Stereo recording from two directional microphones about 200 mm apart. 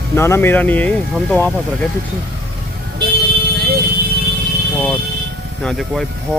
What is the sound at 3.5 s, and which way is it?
Vehicle, 55° right (ahead or behind).